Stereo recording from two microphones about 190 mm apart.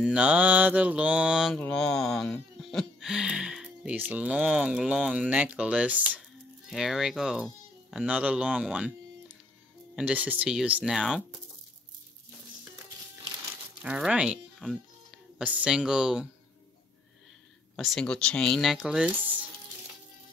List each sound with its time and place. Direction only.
0.0 s mantra: 5° right (ahead or behind)
1.6 s speech: 5° left (ahead or behind)
13.8 s speech: 5° right (ahead or behind)
17.7 s speech: centre (ahead or behind)